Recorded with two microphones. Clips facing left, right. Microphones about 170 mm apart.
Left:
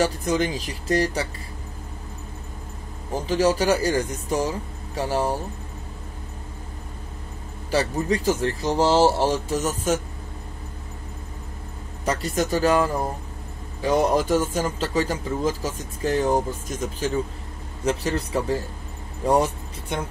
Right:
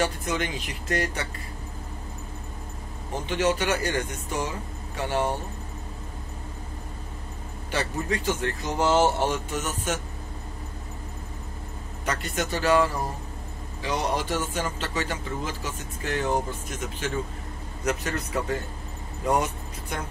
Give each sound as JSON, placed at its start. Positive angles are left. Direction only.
{"t": 0.0, "sound": "a man's voice", "side_deg": 35}
{"t": 3.2, "sound": "a man's voice", "side_deg": 35}
{"t": 7.7, "sound": "a man's voice", "side_deg": 35}
{"t": 12.0, "sound": "a man's voice", "side_deg": 35}
{"t": 13.8, "sound": "a man's voice", "side_deg": 45}